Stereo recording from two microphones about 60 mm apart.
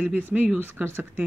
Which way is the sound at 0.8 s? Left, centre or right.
Right.